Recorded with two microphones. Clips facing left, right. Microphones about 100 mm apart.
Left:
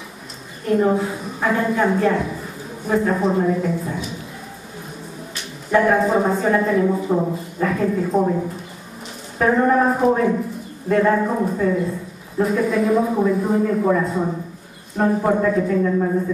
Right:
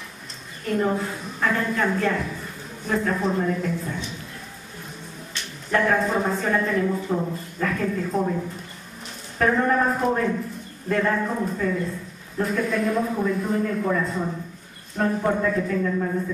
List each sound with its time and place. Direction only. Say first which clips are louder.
0.7 s a woman's voice: left 6 dB; centre (ahead or behind)
5.3 s a woman's voice: left 6 dB; 5° left (ahead or behind)
9.4 s a woman's voice: left 4 dB; 5° left (ahead or behind)
11.1 s a woman's voice: left 5 dB; 15° left (ahead or behind)